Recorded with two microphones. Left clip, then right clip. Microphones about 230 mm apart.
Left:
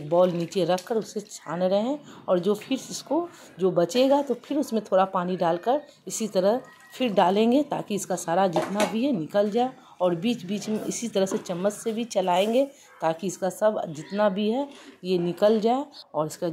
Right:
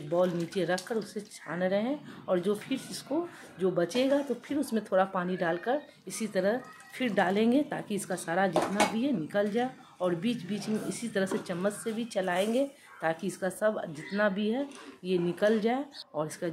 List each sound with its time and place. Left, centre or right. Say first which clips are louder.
0.1 s a woman's voice: left 7 dB; centre
0.7 s a woman's voice: left 6 dB; centre